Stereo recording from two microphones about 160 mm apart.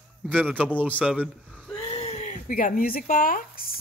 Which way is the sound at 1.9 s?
40° left (ahead or behind).